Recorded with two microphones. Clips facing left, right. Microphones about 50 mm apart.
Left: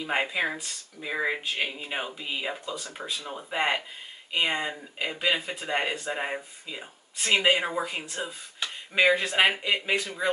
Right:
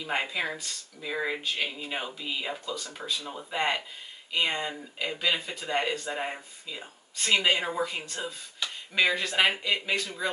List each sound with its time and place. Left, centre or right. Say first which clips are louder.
0.0 s speech: left 3 dB; centre